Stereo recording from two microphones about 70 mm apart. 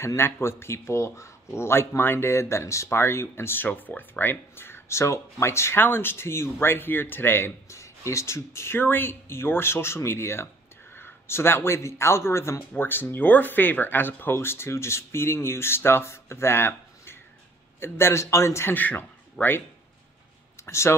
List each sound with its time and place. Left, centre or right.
0.0 s speech: left
18.7 s a man's voice: left
19.4 s speech: centre
20.6 s speech: left